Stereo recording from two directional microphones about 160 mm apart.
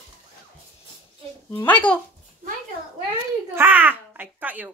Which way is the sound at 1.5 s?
10° left (ahead or behind).